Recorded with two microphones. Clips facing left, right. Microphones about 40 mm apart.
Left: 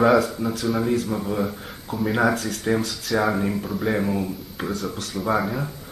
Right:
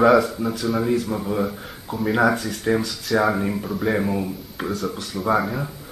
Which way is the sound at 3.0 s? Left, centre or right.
Centre.